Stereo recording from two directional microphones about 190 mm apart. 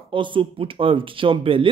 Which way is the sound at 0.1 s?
25° right (ahead or behind).